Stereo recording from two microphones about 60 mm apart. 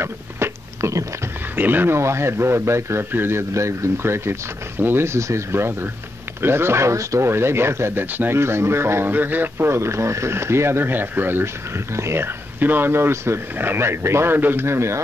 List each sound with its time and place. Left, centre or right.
0.0 s a sound: right
1.6 s speech: right
2.0 s speech: right
8.4 s speech: right
9.1 s speech: right
10.9 s speech: right
12.5 s speech: right